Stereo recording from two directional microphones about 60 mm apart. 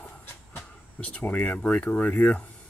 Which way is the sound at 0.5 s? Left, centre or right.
Left.